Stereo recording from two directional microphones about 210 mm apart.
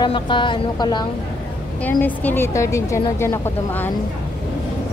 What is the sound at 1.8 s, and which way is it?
A woman's voice, 10° left (ahead or behind).